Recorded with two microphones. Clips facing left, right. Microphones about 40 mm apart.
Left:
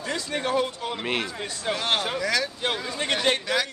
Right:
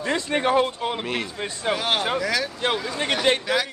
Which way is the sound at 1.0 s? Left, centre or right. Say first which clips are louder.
Even; centre.